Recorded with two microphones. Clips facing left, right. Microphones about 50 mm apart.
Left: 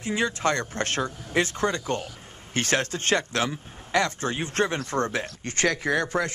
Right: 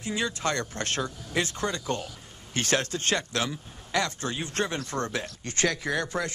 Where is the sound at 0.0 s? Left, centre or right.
Left.